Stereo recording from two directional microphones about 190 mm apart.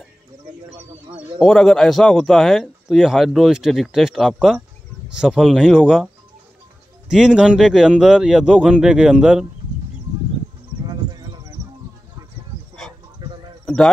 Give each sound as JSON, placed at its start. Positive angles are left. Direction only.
{"t": 1.4, "sound": "speech", "side_deg": 0}
{"t": 7.1, "sound": "speech", "side_deg": -5}